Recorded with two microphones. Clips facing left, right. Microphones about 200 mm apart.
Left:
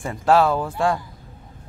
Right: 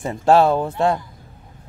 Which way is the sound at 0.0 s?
25° right (ahead or behind).